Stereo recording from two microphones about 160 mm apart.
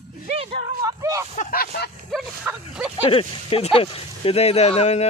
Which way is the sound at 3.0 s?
35° left (ahead or behind).